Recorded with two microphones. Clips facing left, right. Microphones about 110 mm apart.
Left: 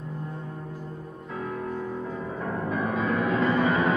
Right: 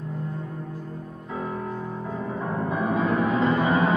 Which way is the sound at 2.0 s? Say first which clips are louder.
Right 2 dB; 15° right (ahead or behind).